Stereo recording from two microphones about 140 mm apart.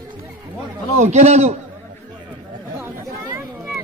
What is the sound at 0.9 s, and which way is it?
Speech, 55° right (ahead or behind).